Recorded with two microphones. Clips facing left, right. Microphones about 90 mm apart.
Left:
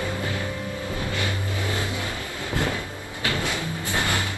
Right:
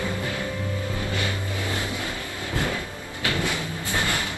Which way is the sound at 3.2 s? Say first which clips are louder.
Even; 20° left (ahead or behind).